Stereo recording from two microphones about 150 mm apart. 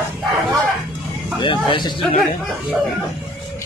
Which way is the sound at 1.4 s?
35° left (ahead or behind).